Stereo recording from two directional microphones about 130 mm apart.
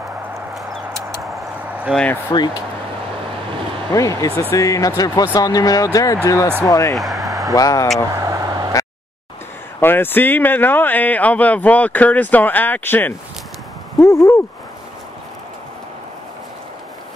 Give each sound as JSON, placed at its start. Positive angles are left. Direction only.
{"t": 0.6, "sound": "chicken", "side_deg": 0}
{"t": 1.9, "sound": "speech", "side_deg": -5}
{"t": 2.3, "sound": "speech", "side_deg": 30}
{"t": 3.9, "sound": "speech", "side_deg": 25}
{"t": 7.0, "sound": "a sound", "side_deg": 0}
{"t": 7.5, "sound": "speech", "side_deg": 25}
{"t": 8.1, "sound": "vehicle", "side_deg": -25}
{"t": 9.8, "sound": "speech", "side_deg": 15}
{"t": 13.9, "sound": "speech", "side_deg": 25}